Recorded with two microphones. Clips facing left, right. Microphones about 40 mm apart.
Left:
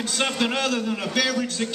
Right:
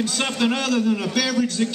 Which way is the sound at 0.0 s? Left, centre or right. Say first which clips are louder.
Right 2 dB; centre.